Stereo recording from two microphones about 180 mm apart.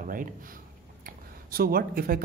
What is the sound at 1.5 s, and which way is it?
Speech, 55° right (ahead or behind).